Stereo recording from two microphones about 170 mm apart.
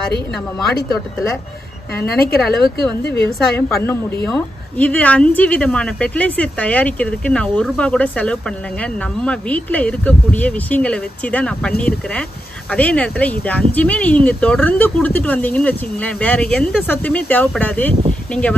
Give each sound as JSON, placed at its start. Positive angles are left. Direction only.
{"t": 2.0, "sound": "a woman's voice", "side_deg": 65}
{"t": 2.8, "sound": "a woman's voice", "side_deg": 10}